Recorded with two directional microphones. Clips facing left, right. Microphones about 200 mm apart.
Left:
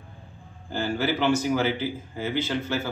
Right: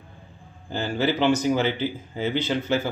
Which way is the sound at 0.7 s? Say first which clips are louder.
Right 2 dB; 20° right (ahead or behind).